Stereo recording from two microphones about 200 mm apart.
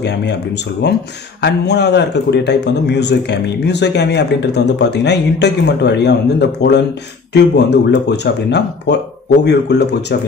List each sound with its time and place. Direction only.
0.0 s a man's voice: 60° left (ahead or behind)
7.3 s a man's voice: 60° left (ahead or behind)